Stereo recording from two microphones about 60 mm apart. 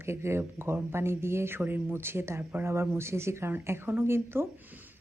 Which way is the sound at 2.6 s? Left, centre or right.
Right.